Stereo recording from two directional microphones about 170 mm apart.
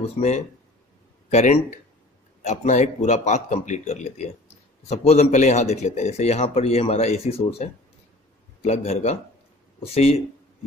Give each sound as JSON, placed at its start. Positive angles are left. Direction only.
{"t": 0.0, "sound": "a man's voice", "side_deg": 40}